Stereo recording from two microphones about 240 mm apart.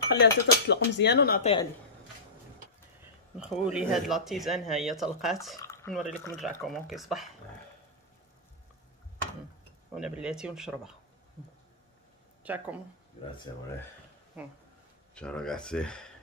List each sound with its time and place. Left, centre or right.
0.1 s speech: left
1.4 s a woman's voice: left
3.0 s a sound: centre
3.6 s speech: centre
5.6 s drip: centre
5.9 s speech: centre
9.9 s speech: centre
12.4 s speech: centre
13.5 s speech: centre
15.1 s speech: centre